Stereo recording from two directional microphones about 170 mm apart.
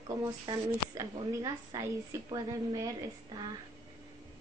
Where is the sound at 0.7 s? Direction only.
20° right (ahead or behind).